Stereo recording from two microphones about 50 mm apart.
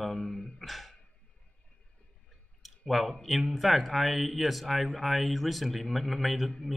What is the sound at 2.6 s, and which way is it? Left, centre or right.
A man's voice, centre.